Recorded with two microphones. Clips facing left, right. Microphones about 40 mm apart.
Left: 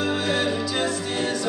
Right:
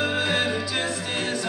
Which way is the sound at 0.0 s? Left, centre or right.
Right.